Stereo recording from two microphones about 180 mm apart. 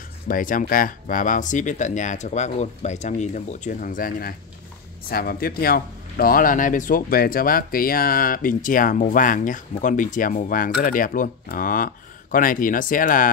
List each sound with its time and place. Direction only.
0.3 s speech: 50° left (ahead or behind)